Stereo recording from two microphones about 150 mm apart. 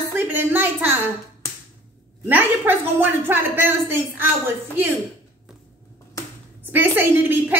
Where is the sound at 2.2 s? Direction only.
15° right (ahead or behind).